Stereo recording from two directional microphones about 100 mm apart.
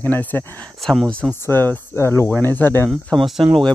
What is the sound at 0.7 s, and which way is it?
Speech, 5° left (ahead or behind).